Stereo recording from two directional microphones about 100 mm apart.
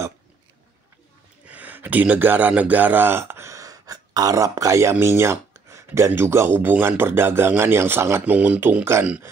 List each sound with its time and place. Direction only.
1.4 s speech: 15° right (ahead or behind)